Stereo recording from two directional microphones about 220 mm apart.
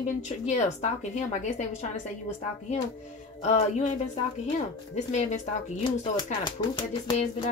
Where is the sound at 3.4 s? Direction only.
30° left (ahead or behind).